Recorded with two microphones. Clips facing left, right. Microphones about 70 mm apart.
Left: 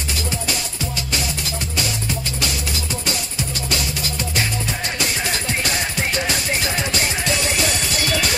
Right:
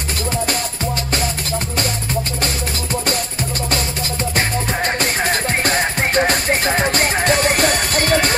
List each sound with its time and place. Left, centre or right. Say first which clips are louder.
5.2 s music: right 5 dB; right